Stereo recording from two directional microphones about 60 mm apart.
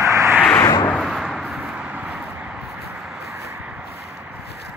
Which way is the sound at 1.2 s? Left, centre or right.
Centre.